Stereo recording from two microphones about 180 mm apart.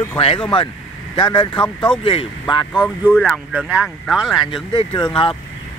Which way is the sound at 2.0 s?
30° left (ahead or behind).